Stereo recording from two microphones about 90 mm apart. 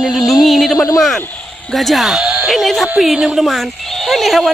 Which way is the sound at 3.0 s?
5° right (ahead or behind).